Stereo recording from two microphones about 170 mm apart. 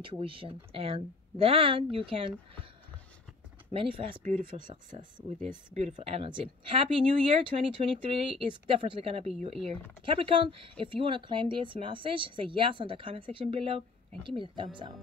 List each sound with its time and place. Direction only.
0.2 s speech: 30° right (ahead or behind)
3.7 s speech: 30° right (ahead or behind)
4.2 s speech: 50° right (ahead or behind)
5.8 s speech: 35° right (ahead or behind)